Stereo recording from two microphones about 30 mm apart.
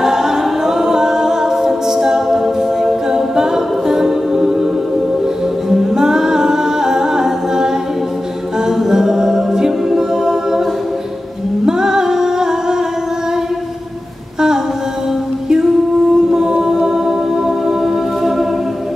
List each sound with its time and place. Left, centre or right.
0.0 s a capella: centre
5.9 s humming: centre
8.6 s a capella: centre
11.6 s music: centre
16.3 s music: right